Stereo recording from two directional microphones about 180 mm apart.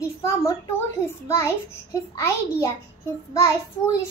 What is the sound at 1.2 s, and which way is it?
A child's voice, 15° left (ahead or behind).